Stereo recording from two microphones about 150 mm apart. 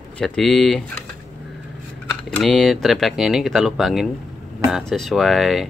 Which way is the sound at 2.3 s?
5° left (ahead or behind).